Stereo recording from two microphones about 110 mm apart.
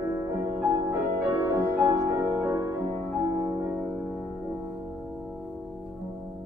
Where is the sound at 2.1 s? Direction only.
20° right (ahead or behind).